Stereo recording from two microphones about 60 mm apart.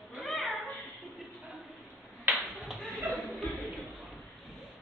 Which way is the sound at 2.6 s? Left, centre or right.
Centre.